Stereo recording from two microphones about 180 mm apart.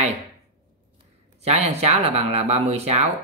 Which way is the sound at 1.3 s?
35° right (ahead or behind).